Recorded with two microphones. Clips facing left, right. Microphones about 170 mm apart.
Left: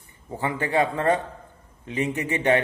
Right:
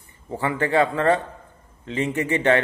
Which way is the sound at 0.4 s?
15° left (ahead or behind).